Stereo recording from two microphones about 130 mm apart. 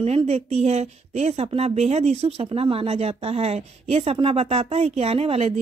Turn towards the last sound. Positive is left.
turn(degrees=-50)  # may be behind; listen again after turning